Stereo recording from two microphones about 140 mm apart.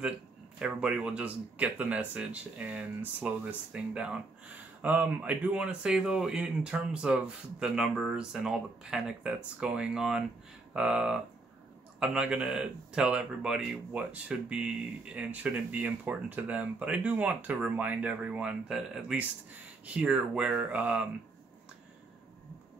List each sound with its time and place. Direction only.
0.6 s a man's voice: 5° right (ahead or behind)